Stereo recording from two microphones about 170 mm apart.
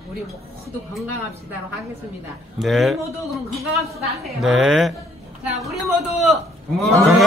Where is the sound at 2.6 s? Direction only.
Centre (ahead or behind).